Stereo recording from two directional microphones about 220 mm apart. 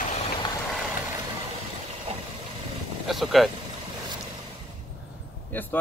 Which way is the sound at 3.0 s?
Centre (ahead or behind).